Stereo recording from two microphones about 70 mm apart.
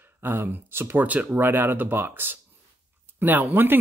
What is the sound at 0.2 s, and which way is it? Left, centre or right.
Speech, right.